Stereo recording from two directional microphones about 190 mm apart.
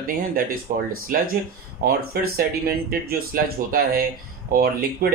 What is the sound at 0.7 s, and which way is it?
Speech, 50° right (ahead or behind).